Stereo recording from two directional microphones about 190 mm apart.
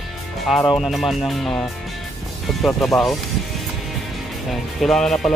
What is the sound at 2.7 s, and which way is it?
Speech, 15° left (ahead or behind).